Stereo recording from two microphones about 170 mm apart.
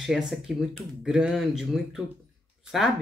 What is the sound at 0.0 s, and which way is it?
Speech, 5° right (ahead or behind).